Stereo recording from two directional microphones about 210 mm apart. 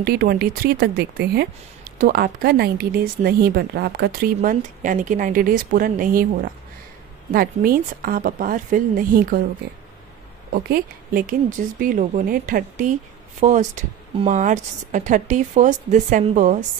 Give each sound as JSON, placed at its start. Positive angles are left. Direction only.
{"t": 0.0, "sound": "speech", "side_deg": -45}
{"t": 7.3, "sound": "speech", "side_deg": -45}
{"t": 10.5, "sound": "a woman's voice", "side_deg": -45}